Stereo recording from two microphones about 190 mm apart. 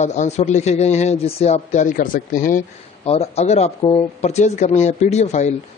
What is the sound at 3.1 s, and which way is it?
Speech, 35° left (ahead or behind).